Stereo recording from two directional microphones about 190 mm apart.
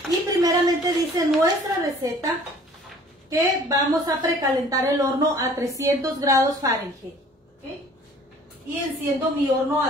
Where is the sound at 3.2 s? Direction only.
20° right (ahead or behind).